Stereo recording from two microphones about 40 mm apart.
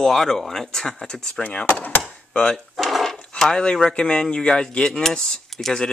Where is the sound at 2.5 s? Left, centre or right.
Centre.